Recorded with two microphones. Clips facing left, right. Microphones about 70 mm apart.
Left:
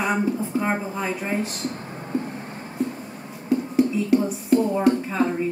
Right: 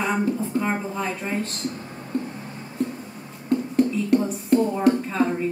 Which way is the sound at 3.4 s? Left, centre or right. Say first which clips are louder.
Even; centre.